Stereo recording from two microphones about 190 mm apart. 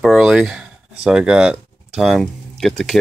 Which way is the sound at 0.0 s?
Centre (ahead or behind).